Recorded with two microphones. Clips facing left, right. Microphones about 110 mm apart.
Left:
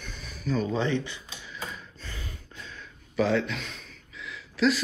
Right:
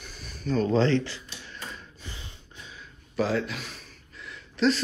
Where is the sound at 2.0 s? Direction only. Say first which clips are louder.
Left 4 dB; 20° right (ahead or behind).